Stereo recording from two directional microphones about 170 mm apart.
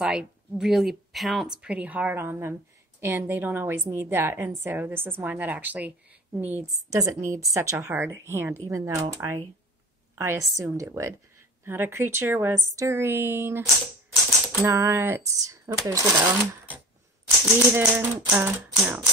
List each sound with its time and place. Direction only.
0.0 s a woman's voice: 5° right (ahead or behind)
17.7 s a woman's voice: 10° right (ahead or behind)